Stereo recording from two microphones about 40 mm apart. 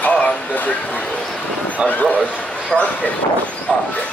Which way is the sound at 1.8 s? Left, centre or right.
Left.